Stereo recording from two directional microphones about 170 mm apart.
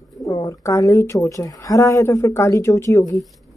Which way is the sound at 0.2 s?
20° left (ahead or behind).